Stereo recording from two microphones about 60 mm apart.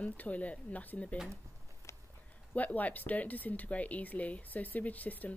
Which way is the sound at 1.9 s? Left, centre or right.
Left.